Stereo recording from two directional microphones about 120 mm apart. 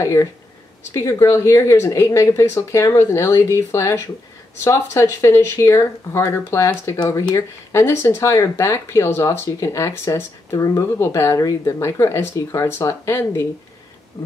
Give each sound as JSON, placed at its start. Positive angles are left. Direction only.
{"t": 0.0, "sound": "speech", "side_deg": 25}